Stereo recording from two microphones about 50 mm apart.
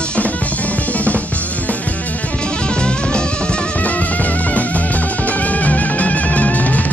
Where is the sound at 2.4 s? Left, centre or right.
Centre.